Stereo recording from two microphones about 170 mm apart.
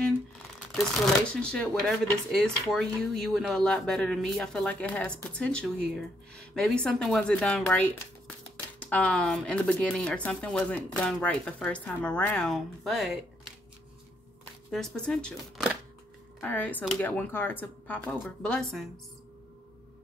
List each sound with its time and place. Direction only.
1.3 s speech: 5° left (ahead or behind)
14.4 s speech: 5° left (ahead or behind)
16.3 s speech: 10° left (ahead or behind)